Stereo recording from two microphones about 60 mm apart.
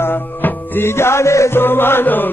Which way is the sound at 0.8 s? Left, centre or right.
Left.